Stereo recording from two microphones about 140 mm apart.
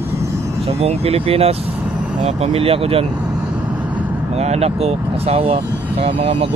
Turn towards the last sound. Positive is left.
turn(degrees=-45)  # may be behind; listen again after turning